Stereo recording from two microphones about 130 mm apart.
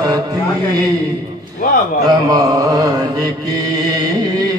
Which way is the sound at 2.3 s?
25° right (ahead or behind).